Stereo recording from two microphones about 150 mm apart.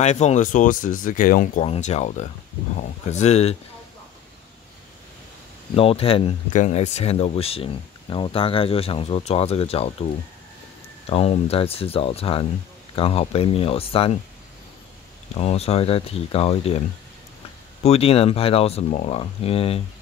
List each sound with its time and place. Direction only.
0.0 s speech: 50° left (ahead or behind); by 1.6 s 65° left (ahead or behind)
1.6 s speech: 45° left (ahead or behind)
5.8 s speech: 40° left (ahead or behind)
6.5 s speech: 50° left (ahead or behind)
11.1 s speech: 40° left (ahead or behind)
15.3 s speech: 45° left (ahead or behind)
17.8 s speech: 40° left (ahead or behind)